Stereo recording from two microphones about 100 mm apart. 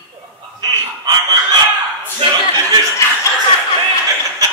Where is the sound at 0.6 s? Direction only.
40° right (ahead or behind).